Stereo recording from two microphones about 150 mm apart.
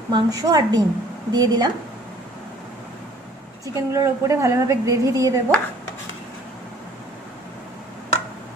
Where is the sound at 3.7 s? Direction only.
20° right (ahead or behind).